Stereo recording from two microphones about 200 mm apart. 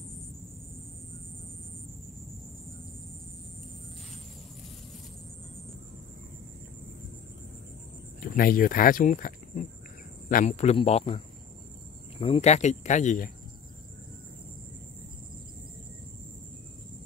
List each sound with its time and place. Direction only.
8.2 s speech: 45° left (ahead or behind)